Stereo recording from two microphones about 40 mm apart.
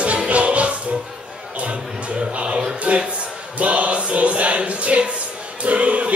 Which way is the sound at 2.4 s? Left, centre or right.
Right.